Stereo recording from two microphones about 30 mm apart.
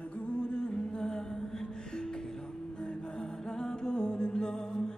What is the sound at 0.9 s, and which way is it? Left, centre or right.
Music, left.